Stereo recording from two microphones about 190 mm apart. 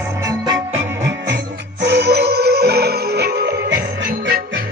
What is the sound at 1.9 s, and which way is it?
Music, 60° right (ahead or behind).